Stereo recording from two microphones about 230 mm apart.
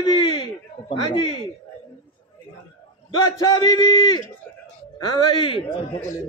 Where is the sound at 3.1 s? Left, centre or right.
Centre.